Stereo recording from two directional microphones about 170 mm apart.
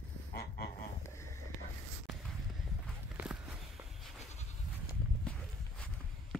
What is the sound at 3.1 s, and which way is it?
Walk, 5° right (ahead or behind).